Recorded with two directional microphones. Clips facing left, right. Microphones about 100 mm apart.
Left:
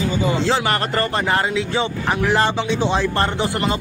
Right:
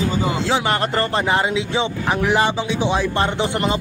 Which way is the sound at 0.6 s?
20° right (ahead or behind).